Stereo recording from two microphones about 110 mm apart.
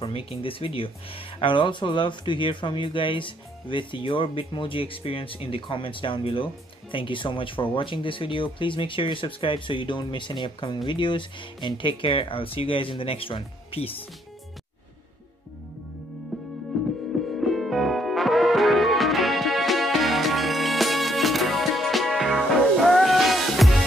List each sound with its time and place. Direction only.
0.0 s speech: 55° left (ahead or behind)
16.3 s music: centre (ahead or behind)